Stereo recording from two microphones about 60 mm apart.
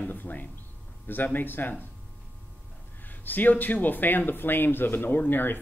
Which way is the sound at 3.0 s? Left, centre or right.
Left.